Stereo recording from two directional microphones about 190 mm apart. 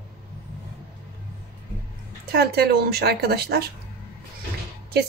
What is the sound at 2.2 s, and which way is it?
Speech, 55° right (ahead or behind).